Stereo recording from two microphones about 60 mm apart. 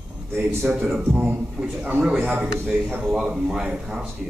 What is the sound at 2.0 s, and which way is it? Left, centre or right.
Speech, centre.